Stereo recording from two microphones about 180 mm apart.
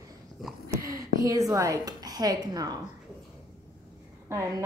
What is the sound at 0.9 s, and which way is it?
A woman's voice, 20° right (ahead or behind).